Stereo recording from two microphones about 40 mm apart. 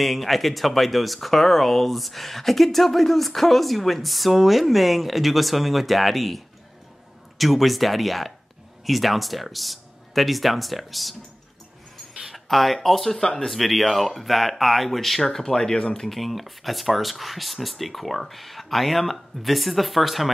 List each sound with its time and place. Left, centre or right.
0.0 s speech: centre
12.4 s speech: centre
13.2 s speech: centre
13.5 s speech: centre
16.2 s speech: centre